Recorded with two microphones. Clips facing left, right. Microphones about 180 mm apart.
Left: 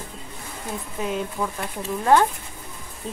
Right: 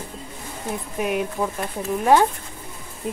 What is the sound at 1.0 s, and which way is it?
Speech, 15° right (ahead or behind).